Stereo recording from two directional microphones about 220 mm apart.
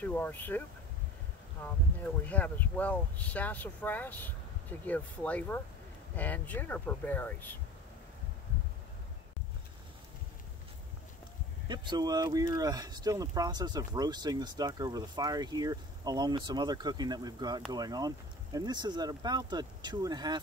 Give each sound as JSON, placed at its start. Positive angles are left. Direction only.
{"t": 0.0, "sound": "speech", "side_deg": 5}
{"t": 11.6, "sound": "speech", "side_deg": -20}